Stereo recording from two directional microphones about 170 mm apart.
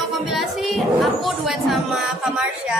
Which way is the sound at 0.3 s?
Centre (ahead or behind).